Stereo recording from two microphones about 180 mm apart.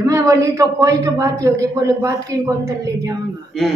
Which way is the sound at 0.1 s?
15° right (ahead or behind).